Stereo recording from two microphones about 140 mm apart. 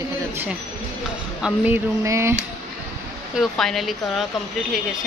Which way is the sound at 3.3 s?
Centre (ahead or behind).